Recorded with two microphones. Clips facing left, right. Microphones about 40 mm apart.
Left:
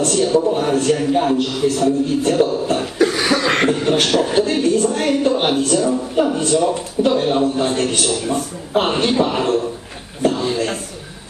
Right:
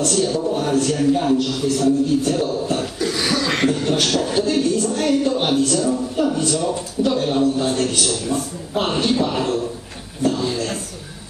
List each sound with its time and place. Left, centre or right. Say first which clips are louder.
0.0 s speech: left 4 dB; left
2.7 s cough: left 5 dB; left
3.4 s a man's voice: left 3 dB; left